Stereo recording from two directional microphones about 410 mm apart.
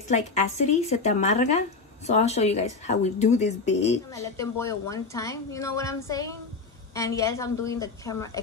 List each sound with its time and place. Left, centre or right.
0.1 s speech: centre